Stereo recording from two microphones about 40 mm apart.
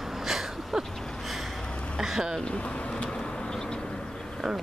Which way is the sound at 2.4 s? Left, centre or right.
Left.